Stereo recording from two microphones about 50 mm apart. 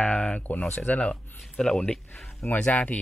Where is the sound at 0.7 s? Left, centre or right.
Left.